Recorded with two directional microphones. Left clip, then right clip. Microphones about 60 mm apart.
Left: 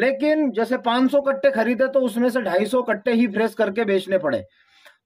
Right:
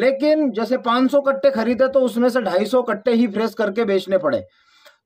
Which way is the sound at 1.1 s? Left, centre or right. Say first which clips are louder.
Right 3 dB; right.